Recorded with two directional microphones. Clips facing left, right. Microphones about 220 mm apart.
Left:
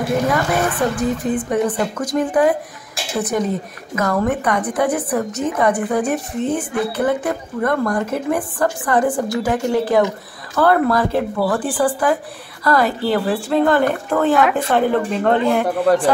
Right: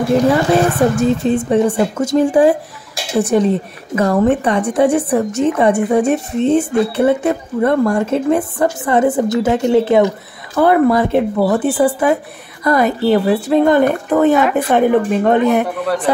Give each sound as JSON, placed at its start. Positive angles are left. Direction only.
{"t": 0.3, "sound": "a woman's voice", "side_deg": -30}